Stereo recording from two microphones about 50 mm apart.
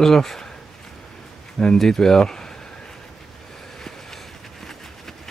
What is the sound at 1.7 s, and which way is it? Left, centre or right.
Speech, centre.